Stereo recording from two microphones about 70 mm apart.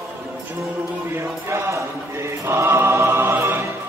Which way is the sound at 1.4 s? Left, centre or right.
Right.